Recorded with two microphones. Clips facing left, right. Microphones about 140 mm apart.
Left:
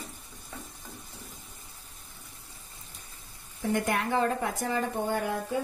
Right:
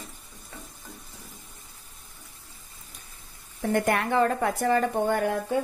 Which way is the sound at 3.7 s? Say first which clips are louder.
Right 5 dB; 60° right (ahead or behind).